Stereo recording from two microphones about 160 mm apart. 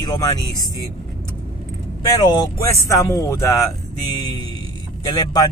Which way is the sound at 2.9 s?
20° left (ahead or behind).